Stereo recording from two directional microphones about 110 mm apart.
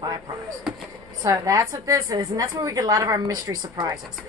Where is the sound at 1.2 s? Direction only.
35° right (ahead or behind).